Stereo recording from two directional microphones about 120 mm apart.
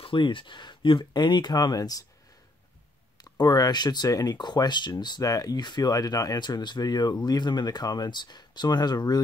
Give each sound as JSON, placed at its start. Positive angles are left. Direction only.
{"t": 0.0, "sound": "speech", "side_deg": 45}
{"t": 3.2, "sound": "speech", "side_deg": 35}